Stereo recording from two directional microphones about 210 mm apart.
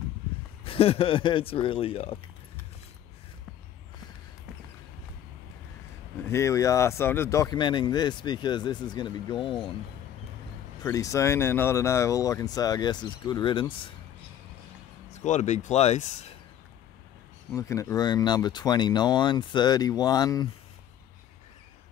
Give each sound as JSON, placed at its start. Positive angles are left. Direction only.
{"t": 0.7, "sound": "speech", "side_deg": 25}
{"t": 6.2, "sound": "speech", "side_deg": 15}
{"t": 10.8, "sound": "speech", "side_deg": 15}
{"t": 15.1, "sound": "speech", "side_deg": 35}
{"t": 17.6, "sound": "speech", "side_deg": 15}